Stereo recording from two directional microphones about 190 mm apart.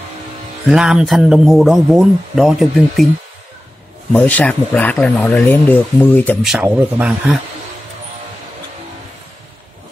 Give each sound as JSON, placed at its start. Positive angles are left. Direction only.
{"t": 0.7, "sound": "a man's voice", "side_deg": -5}
{"t": 4.1, "sound": "speech", "side_deg": 10}
{"t": 6.4, "sound": "a man's voice", "side_deg": -5}